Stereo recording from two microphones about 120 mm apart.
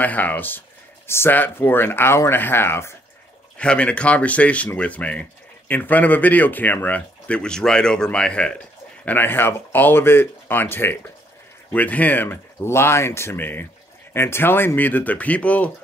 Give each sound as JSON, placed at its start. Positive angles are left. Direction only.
{"t": 0.0, "sound": "speech", "side_deg": 15}
{"t": 3.5, "sound": "speech", "side_deg": 10}